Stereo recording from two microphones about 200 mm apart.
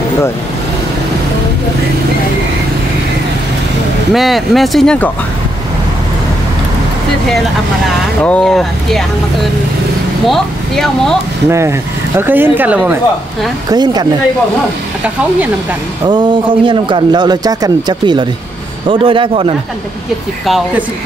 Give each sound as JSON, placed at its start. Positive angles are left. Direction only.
{"t": 4.1, "sound": "speech", "side_deg": 0}
{"t": 8.2, "sound": "speech", "side_deg": 5}
{"t": 10.2, "sound": "speech", "side_deg": 0}
{"t": 11.4, "sound": "speech", "side_deg": -15}
{"t": 13.7, "sound": "a man's voice", "side_deg": -20}
{"t": 16.1, "sound": "a man's voice", "side_deg": -25}
{"t": 20.4, "sound": "speech", "side_deg": 0}